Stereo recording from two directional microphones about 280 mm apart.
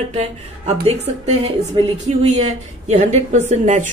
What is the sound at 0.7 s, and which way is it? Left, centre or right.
Speech, right.